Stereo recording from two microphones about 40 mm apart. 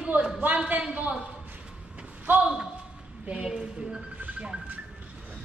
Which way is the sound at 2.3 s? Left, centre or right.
Right.